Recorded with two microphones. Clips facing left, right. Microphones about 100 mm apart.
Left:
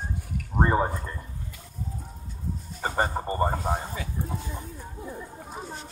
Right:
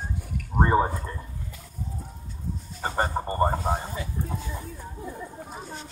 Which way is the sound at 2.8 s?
15° left (ahead or behind).